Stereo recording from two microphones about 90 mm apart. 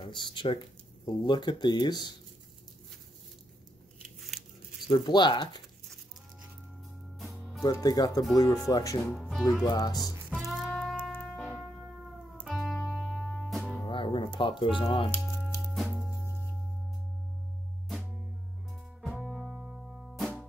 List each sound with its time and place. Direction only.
0.0 s speech: 60° left (ahead or behind)
4.2 s a sound: centre (ahead or behind)
4.8 s speech: 55° left (ahead or behind)
7.8 s speech: 45° left (ahead or behind)
9.1 s speech: centre (ahead or behind)
9.7 s speech: 45° left (ahead or behind)
10.4 s music: centre (ahead or behind)
13.8 s music: 70° left (ahead or behind)
14.6 s speech: 75° left (ahead or behind)
15.6 s music: centre (ahead or behind)
19.1 s music: 5° right (ahead or behind)